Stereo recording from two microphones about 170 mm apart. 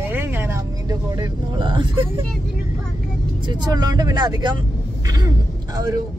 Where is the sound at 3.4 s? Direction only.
25° right (ahead or behind).